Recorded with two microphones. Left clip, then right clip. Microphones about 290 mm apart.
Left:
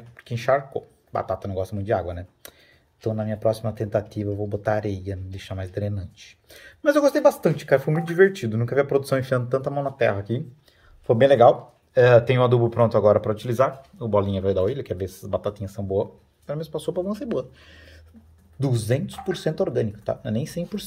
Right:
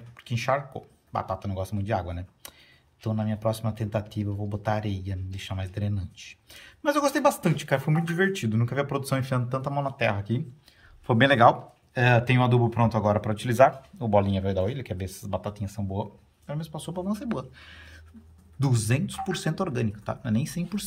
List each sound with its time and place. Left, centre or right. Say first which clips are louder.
0.2 s speech: left 5 dB; centre